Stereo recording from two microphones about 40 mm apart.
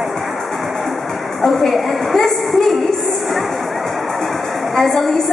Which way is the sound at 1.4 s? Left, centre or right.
Centre.